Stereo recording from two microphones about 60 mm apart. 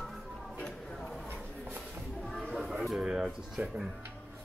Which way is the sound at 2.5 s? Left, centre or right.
Centre.